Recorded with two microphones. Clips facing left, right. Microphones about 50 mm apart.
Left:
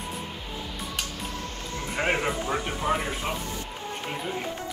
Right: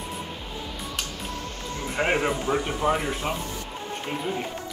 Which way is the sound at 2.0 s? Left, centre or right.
Centre.